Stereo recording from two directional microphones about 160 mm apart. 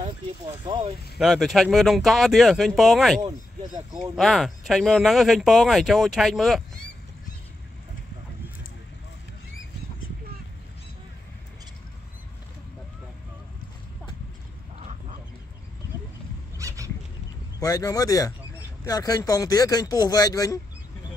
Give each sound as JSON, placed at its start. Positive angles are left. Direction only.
{"t": 0.7, "sound": "speech", "side_deg": -35}
{"t": 1.1, "sound": "speech", "side_deg": 0}
{"t": 3.2, "sound": "speech", "side_deg": -25}
{"t": 4.1, "sound": "speech", "side_deg": 0}
{"t": 14.8, "sound": "a sound", "side_deg": -50}
{"t": 16.5, "sound": "a sound", "side_deg": -20}
{"t": 17.6, "sound": "speech", "side_deg": 20}